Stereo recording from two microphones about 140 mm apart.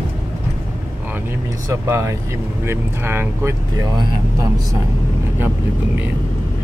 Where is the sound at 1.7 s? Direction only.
20° right (ahead or behind).